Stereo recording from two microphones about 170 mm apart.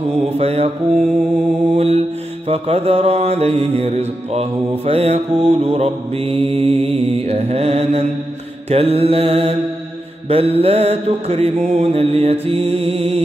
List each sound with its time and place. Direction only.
0.1 s mantra: 35° right (ahead or behind)
0.9 s mantra: 5° right (ahead or behind)
1.8 s mantra: 35° right (ahead or behind)